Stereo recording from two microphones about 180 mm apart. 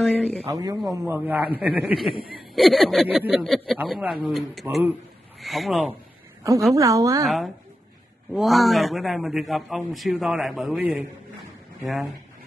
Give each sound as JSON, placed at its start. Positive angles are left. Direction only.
{"t": 0.0, "sound": "a man's voice", "side_deg": 5}
{"t": 0.5, "sound": "a woman's voice", "side_deg": -20}
{"t": 6.7, "sound": "a woman's voice", "side_deg": -20}
{"t": 7.2, "sound": "a man's voice", "side_deg": 0}